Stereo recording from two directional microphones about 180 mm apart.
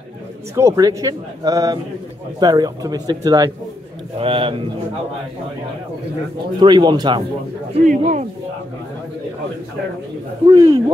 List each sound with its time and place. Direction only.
0.6 s speech: 15° right (ahead or behind)
6.6 s speech: 25° right (ahead or behind)
7.7 s speech: 45° right (ahead or behind)
10.5 s speech: 20° right (ahead or behind)